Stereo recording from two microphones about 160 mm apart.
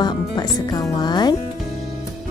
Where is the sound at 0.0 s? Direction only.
25° left (ahead or behind).